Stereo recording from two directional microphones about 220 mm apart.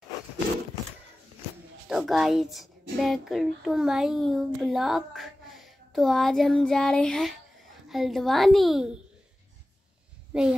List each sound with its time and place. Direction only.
1.9 s speech: centre (ahead or behind)
10.3 s speech: 5° right (ahead or behind)